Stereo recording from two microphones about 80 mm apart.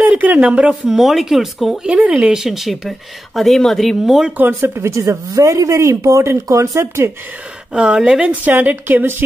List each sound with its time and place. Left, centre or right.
0.0 s speech: right; by 4.3 s centre
4.4 s speech: right
7.7 s speech: centre; by 9.2 s right